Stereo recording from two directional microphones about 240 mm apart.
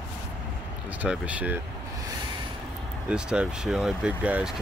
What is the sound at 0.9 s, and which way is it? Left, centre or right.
Speech, centre.